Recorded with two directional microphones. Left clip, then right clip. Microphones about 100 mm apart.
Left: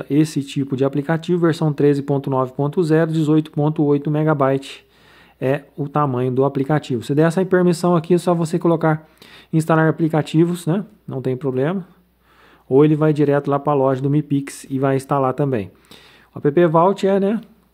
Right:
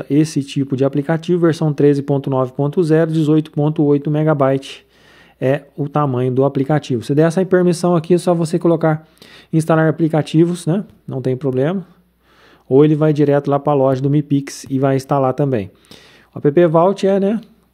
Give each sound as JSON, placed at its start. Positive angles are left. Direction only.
{"t": 0.0, "sound": "speech", "side_deg": -30}